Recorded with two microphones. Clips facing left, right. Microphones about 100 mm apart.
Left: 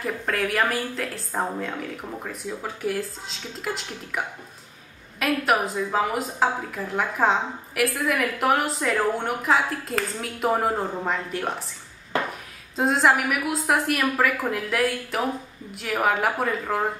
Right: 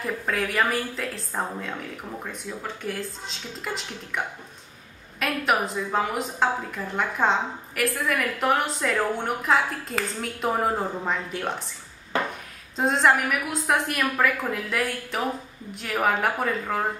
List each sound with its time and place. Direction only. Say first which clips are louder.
0.0 s a woman's voice: left 1 dB; centre (ahead or behind)
5.2 s a woman's voice: left 2 dB; centre (ahead or behind)
12.7 s a woman's voice: left 1 dB; centre (ahead or behind)